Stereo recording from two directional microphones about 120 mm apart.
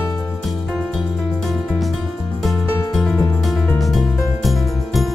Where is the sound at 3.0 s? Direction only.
Centre (ahead or behind).